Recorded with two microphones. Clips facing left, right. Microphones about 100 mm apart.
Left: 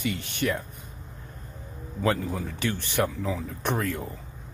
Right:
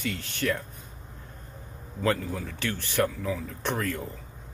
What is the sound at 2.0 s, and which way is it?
Speech, 15° left (ahead or behind).